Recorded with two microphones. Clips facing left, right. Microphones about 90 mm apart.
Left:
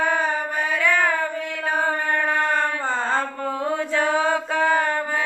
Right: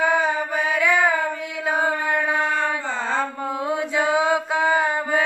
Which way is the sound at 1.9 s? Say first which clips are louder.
Even; 10° right (ahead or behind).